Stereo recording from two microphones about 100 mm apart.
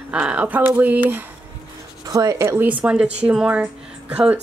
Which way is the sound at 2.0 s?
35° right (ahead or behind).